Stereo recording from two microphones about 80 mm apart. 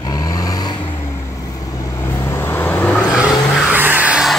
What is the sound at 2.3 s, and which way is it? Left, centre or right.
Vehicle, left.